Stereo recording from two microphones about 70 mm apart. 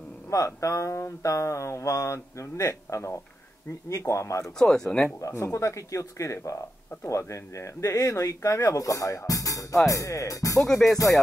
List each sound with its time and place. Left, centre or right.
0.3 s speech: left
4.6 s speech: centre
5.2 s speech: left